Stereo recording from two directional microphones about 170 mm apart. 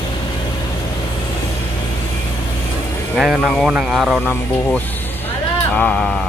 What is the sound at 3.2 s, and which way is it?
Speech, 5° right (ahead or behind).